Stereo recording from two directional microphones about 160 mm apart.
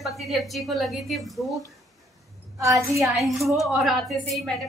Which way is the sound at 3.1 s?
Centre (ahead or behind).